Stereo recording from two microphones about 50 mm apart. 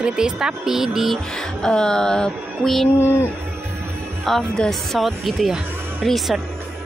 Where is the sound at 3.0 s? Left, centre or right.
Left.